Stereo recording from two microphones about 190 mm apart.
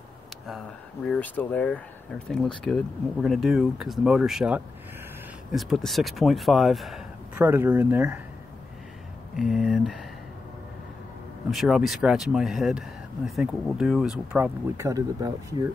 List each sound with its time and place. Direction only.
1.0 s speech: 5° left (ahead or behind)
7.4 s speech: 10° right (ahead or behind)
9.4 s speech: centre (ahead or behind)
11.5 s speech: centre (ahead or behind); by 15.7 s 20° right (ahead or behind)